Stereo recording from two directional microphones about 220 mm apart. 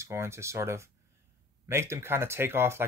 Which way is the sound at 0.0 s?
10° right (ahead or behind).